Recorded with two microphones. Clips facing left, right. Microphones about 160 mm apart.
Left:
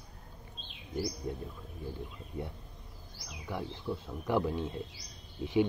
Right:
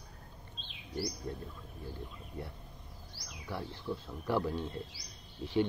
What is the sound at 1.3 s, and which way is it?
Speech, 10° left (ahead or behind).